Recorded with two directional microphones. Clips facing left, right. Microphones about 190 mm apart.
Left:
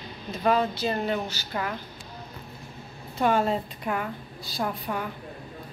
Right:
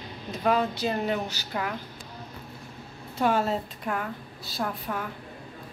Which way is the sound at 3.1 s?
5° right (ahead or behind).